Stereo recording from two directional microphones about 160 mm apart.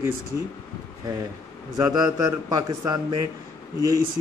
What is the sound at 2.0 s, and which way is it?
A man's voice, 20° right (ahead or behind).